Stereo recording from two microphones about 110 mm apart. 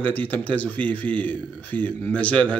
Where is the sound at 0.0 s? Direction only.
15° left (ahead or behind).